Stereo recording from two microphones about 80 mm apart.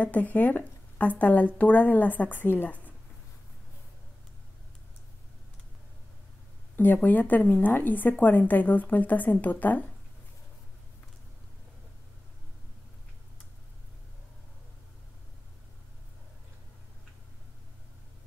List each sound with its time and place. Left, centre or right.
0.0 s a woman's voice: centre
6.8 s a woman's voice: left